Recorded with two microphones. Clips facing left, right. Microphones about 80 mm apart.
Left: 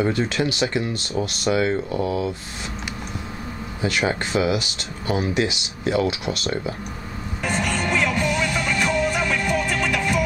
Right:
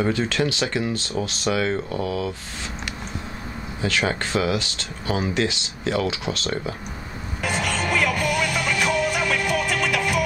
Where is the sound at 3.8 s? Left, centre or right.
Centre.